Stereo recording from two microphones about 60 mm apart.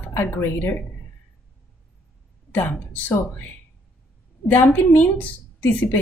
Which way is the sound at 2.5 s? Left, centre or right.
Left.